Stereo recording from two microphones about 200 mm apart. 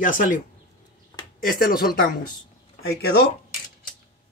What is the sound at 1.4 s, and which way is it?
Speech, 45° left (ahead or behind).